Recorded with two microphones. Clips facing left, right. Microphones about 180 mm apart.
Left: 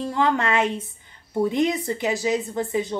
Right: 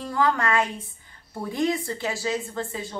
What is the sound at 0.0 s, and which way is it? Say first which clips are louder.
A woman's voice: left 2 dB; 25° left (ahead or behind).